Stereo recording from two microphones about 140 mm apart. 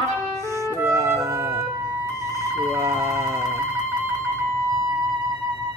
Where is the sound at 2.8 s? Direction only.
20° right (ahead or behind).